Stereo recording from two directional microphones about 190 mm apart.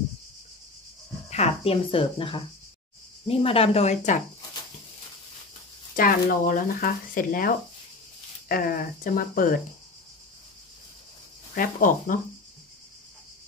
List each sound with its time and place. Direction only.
1.3 s speech: 30° left (ahead or behind)
5.9 s speech: 50° left (ahead or behind)
11.5 s speech: 45° left (ahead or behind)